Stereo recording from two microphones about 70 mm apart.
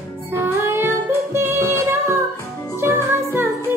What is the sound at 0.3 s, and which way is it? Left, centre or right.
Music, right.